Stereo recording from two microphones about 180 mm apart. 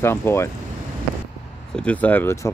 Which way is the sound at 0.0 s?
15° left (ahead or behind).